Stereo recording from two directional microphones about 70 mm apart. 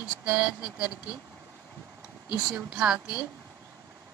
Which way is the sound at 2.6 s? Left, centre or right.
Centre.